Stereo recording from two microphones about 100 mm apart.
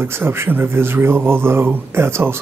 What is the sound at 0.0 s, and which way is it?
Speech, 20° right (ahead or behind).